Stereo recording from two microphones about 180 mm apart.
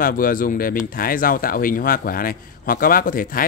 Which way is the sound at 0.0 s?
50° left (ahead or behind).